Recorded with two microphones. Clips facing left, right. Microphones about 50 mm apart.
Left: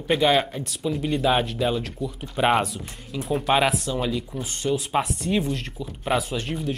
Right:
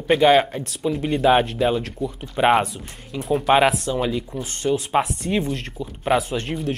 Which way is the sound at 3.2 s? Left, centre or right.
Centre.